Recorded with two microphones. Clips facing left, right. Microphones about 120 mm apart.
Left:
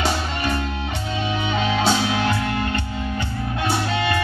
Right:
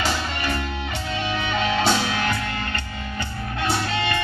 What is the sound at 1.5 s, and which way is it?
Music, 20° left (ahead or behind).